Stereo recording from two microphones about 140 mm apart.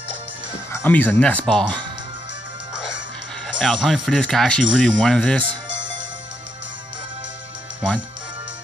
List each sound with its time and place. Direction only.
0.7 s speech: 15° left (ahead or behind)
3.6 s speech: centre (ahead or behind)